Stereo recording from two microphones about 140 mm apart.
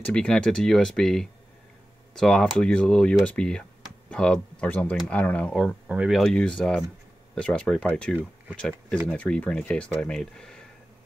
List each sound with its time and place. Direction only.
0.0 s speech: 5° left (ahead or behind)